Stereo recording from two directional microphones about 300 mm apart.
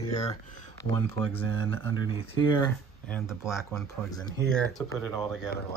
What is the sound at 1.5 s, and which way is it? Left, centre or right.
Speech, right.